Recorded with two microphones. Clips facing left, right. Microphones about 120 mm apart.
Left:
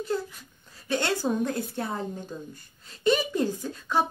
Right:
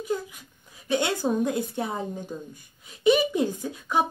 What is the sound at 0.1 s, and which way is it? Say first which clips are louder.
Speech: left 2 dB; 15° right (ahead or behind).